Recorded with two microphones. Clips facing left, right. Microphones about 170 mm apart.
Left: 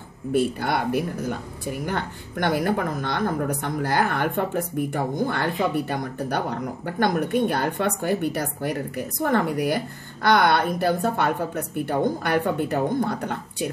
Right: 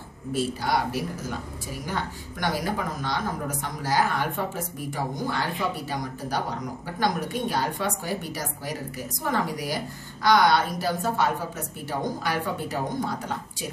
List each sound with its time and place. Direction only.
0.3 s speech: 60° left (ahead or behind)